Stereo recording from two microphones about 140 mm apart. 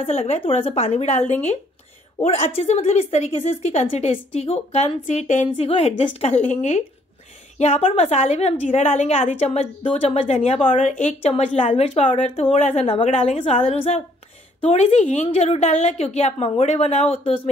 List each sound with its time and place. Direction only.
0.0 s a woman's voice: 50° left (ahead or behind)
5.6 s a woman's voice: 45° left (ahead or behind)